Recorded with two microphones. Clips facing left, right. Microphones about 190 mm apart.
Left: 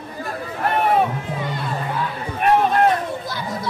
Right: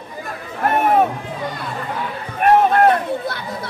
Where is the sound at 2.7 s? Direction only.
60° right (ahead or behind).